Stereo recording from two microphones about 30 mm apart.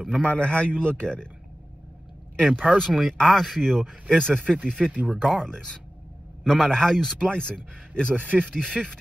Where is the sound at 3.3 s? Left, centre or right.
Centre.